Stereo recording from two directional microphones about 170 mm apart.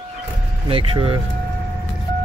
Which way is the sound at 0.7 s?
30° right (ahead or behind).